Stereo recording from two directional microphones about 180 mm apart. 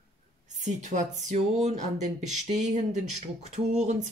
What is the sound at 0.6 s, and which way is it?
Speech, 40° right (ahead or behind).